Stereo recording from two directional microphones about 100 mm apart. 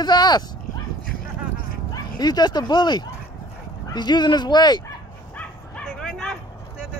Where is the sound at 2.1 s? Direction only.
45° left (ahead or behind).